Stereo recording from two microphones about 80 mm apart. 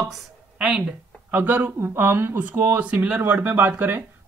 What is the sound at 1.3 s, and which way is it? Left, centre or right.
Speech, right.